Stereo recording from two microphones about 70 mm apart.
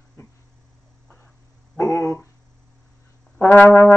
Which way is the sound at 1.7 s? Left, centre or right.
Left.